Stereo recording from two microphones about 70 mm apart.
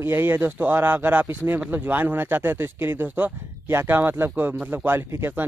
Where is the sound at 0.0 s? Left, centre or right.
Right.